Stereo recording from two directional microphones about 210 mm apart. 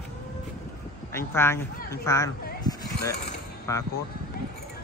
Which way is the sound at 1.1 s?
10° left (ahead or behind).